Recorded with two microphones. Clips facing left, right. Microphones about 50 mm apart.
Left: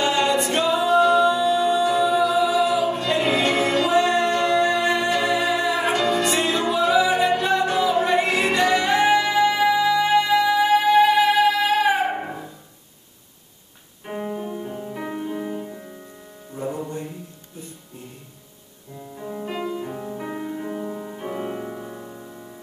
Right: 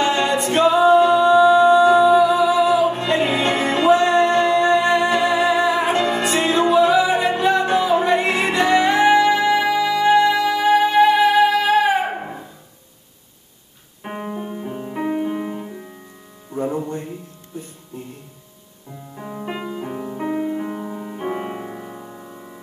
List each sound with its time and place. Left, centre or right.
0.0 s a capella: centre
0.6 s music: centre
7.5 s music: right; by 11.9 s centre
14.2 s music: centre
19.1 s music: right